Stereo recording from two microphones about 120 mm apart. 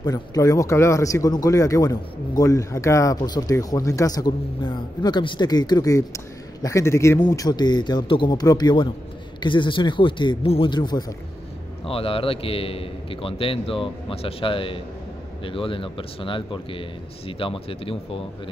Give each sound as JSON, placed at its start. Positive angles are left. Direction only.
{"t": 0.0, "sound": "speech", "side_deg": 30}
{"t": 7.4, "sound": "a man's voice", "side_deg": 35}
{"t": 10.7, "sound": "speech", "side_deg": 35}
{"t": 11.9, "sound": "a man's voice", "side_deg": 50}